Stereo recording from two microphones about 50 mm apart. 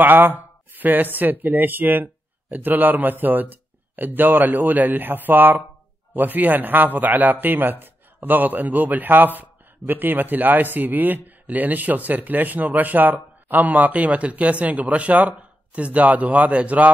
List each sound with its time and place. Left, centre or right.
0.0 s speech: right